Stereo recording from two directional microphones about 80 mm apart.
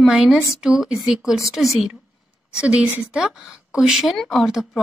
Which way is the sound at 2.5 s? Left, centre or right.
Centre.